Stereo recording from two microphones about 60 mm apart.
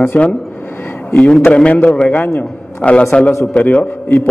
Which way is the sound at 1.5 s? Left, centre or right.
Left.